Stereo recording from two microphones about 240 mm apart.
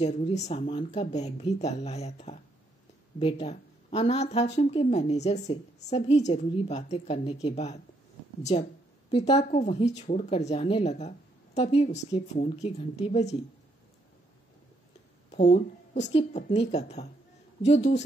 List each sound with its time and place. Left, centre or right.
0.0 s a woman's voice: left
15.3 s a woman's voice: left